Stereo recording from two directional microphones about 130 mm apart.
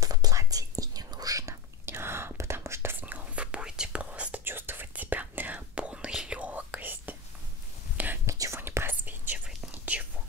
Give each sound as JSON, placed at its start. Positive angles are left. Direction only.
{"t": 0.0, "sound": "whispering", "side_deg": -30}